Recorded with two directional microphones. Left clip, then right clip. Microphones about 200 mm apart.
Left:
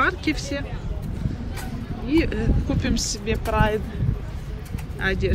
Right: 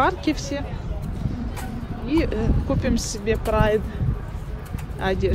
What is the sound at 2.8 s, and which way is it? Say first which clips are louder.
Speech: right 1 dB; 25° right (ahead or behind).